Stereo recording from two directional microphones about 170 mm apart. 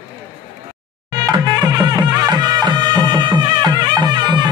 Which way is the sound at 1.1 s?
25° right (ahead or behind).